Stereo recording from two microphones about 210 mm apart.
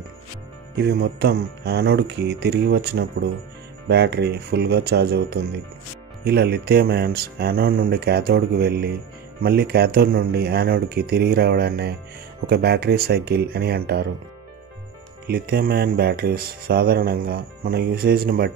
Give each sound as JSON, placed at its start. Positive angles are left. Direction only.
{"t": 0.7, "sound": "speech", "side_deg": -50}
{"t": 15.2, "sound": "speech", "side_deg": -50}